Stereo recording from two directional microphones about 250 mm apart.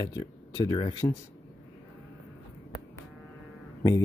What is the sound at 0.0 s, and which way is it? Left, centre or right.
Speech, centre.